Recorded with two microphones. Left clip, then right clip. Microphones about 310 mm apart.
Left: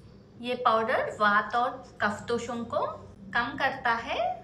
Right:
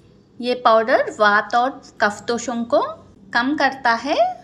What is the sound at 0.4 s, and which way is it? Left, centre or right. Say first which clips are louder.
A woman's voice: right 10 dB; centre.